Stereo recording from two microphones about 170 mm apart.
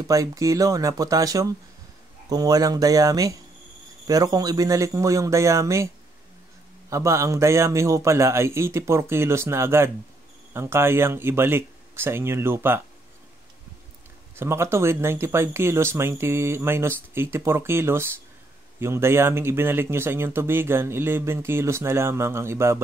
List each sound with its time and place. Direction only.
0.0 s speech: 20° right (ahead or behind)
6.9 s speech: 15° right (ahead or behind)
14.3 s speech: 15° right (ahead or behind)